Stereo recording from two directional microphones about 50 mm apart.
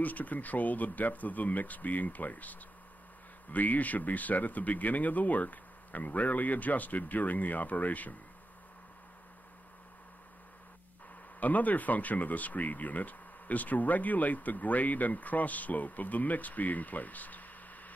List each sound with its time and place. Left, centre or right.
0.0 s speech: left
3.5 s speech: left
11.3 s speech: left